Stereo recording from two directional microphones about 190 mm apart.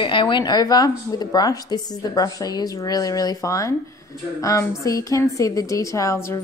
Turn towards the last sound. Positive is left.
turn(degrees=15)  # may be behind; listen again after turning